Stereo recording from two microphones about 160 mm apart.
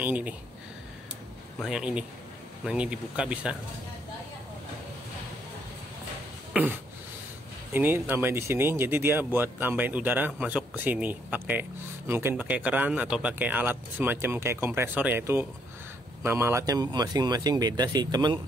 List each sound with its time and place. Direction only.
0.0 s speech: 10° right (ahead or behind)
1.6 s speech: 5° right (ahead or behind)
6.5 s speech: 10° right (ahead or behind)
7.7 s speech: 10° right (ahead or behind)